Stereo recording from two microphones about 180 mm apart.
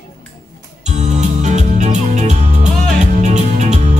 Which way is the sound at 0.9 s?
40° right (ahead or behind).